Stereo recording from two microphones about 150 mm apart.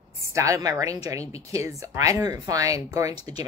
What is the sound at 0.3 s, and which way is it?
Speech, 20° right (ahead or behind).